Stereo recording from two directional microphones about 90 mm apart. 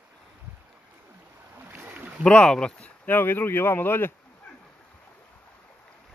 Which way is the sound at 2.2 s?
10° left (ahead or behind).